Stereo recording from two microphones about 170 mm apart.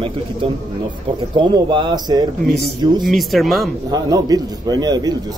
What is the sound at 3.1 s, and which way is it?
Speech, centre (ahead or behind).